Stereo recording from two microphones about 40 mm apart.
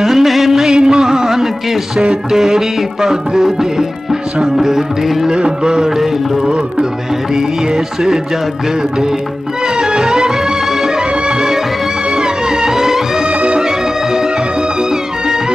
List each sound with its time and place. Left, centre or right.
0.0 s music: centre
0.7 s music: centre
1.0 s a sound: centre
2.3 s music: centre
4.6 s music: centre
9.8 s music: centre